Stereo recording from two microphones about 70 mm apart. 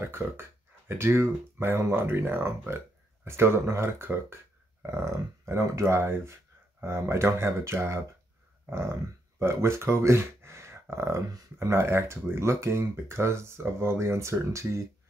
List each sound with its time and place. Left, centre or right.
0.0 s speech: right
9.4 s speech: right